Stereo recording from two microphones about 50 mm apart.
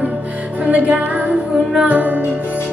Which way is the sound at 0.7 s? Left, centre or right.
Right.